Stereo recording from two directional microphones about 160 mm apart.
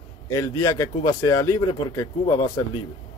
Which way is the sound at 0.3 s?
25° left (ahead or behind).